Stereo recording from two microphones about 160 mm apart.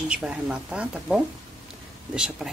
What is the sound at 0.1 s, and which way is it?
Speech, 5° right (ahead or behind).